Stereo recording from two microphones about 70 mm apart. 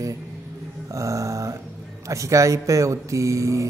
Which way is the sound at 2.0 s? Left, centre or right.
Right.